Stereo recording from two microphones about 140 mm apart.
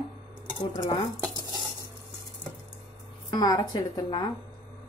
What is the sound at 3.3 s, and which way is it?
Speech, 25° left (ahead or behind).